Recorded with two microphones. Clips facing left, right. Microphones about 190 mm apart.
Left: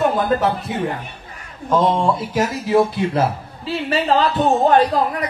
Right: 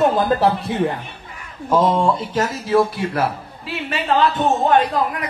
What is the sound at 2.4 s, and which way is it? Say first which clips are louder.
Speech: left 1 dB; 15° left (ahead or behind).